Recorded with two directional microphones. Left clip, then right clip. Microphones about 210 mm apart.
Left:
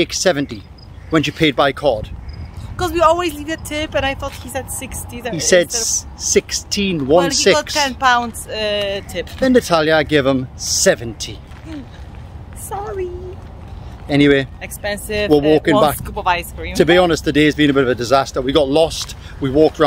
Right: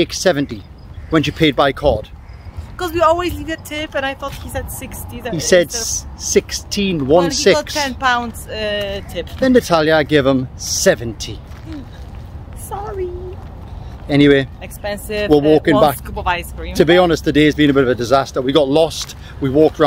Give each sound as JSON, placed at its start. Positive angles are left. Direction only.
{"t": 0.0, "sound": "speech", "side_deg": -5}
{"t": 2.8, "sound": "speech", "side_deg": 20}
{"t": 5.3, "sound": "speech", "side_deg": 0}
{"t": 8.0, "sound": "speech", "side_deg": 15}
{"t": 9.4, "sound": "speech", "side_deg": 0}
{"t": 12.6, "sound": "a sound", "side_deg": 25}
{"t": 14.0, "sound": "speech", "side_deg": 0}
{"t": 14.6, "sound": "speech", "side_deg": 25}
{"t": 15.6, "sound": "speech", "side_deg": 0}
{"t": 16.0, "sound": "speech", "side_deg": 15}
{"t": 16.7, "sound": "speech", "side_deg": 0}